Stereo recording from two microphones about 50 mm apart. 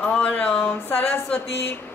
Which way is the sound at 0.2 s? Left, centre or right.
Left.